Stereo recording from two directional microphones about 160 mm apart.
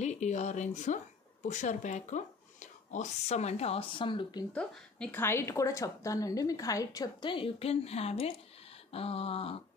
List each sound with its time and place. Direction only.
0.0 s speech: 45° left (ahead or behind); by 4.5 s 30° left (ahead or behind)
4.6 s a woman's voice: 5° left (ahead or behind); by 8.3 s 40° left (ahead or behind)
8.9 s a sound: 40° left (ahead or behind)